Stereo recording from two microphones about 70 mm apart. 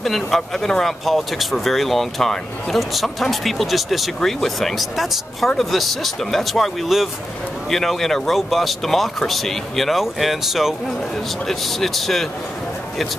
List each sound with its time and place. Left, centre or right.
0.0 s speech: centre